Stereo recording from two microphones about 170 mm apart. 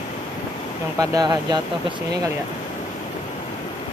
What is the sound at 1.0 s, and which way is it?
Speech, 25° right (ahead or behind).